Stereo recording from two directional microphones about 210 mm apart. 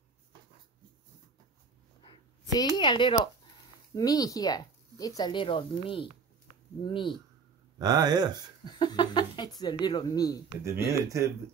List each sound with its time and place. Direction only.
2.7 s speech: 20° left (ahead or behind)
7.8 s speech: 20° right (ahead or behind)
8.6 s a sound: 20° left (ahead or behind)
9.6 s speech: 20° left (ahead or behind)
10.6 s speech: 15° right (ahead or behind)